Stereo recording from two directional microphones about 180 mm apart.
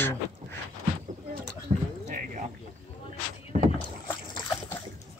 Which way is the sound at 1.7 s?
40° right (ahead or behind).